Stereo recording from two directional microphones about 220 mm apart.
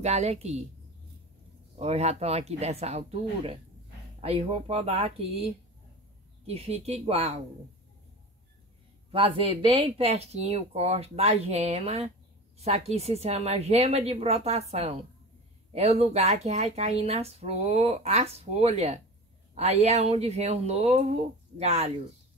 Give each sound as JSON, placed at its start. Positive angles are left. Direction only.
{"t": 0.0, "sound": "a woman's voice", "side_deg": -30}
{"t": 1.8, "sound": "speech", "side_deg": -30}
{"t": 9.1, "sound": "speech", "side_deg": -25}